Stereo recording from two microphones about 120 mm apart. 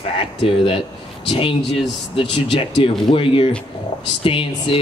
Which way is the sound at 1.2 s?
50° left (ahead or behind).